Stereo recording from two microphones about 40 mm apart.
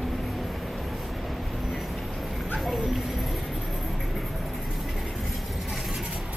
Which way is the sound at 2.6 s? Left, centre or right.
Centre.